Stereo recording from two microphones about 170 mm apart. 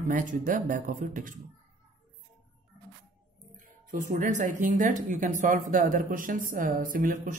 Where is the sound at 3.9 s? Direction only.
45° right (ahead or behind).